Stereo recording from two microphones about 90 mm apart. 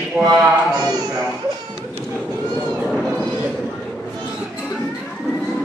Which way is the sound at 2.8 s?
5° left (ahead or behind).